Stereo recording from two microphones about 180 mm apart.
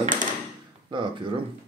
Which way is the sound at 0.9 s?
25° right (ahead or behind).